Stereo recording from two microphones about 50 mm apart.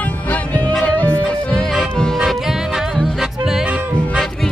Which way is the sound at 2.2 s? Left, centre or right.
Centre.